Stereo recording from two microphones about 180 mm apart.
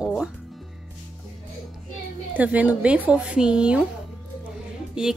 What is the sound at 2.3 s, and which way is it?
A woman's voice, 10° right (ahead or behind).